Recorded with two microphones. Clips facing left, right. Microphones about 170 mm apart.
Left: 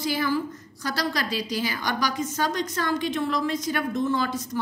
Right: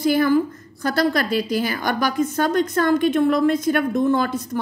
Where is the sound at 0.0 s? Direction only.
55° right (ahead or behind).